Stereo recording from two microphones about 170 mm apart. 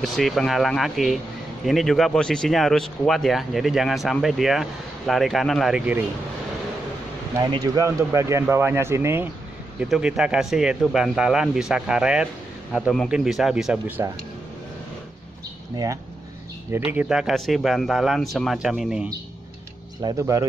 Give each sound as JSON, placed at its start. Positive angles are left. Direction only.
{"t": 0.0, "sound": "a man's voice", "side_deg": 0}
{"t": 7.3, "sound": "speech", "side_deg": -25}
{"t": 9.8, "sound": "a man's voice", "side_deg": -5}
{"t": 16.7, "sound": "a man's voice", "side_deg": -10}
{"t": 20.0, "sound": "speech", "side_deg": -20}